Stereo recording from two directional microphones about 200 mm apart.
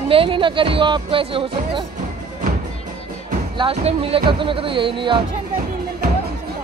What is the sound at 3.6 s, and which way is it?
Speech, 30° right (ahead or behind).